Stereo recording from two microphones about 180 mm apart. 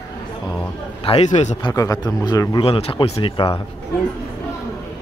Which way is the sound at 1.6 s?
20° left (ahead or behind).